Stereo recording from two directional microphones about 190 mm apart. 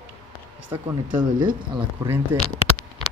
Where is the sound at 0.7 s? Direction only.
25° right (ahead or behind).